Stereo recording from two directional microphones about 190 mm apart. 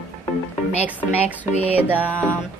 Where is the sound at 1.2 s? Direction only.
35° left (ahead or behind).